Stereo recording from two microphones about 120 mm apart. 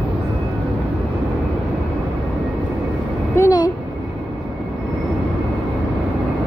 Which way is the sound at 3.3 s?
30° left (ahead or behind).